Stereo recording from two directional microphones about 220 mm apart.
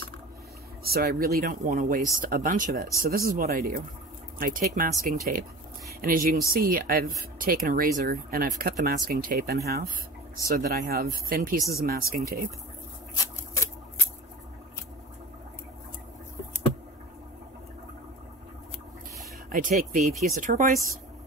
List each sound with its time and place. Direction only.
0.8 s speech: 45° right (ahead or behind)
19.5 s speech: 40° right (ahead or behind)